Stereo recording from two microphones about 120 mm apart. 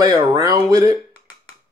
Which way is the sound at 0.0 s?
30° right (ahead or behind).